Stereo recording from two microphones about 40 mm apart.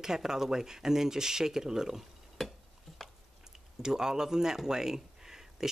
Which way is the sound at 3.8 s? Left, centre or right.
Centre.